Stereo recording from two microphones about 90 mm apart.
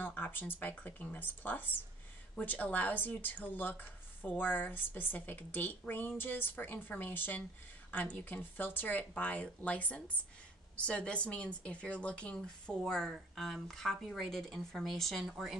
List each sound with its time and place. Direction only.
0.0 s speech: 20° left (ahead or behind); by 15.5 s centre (ahead or behind)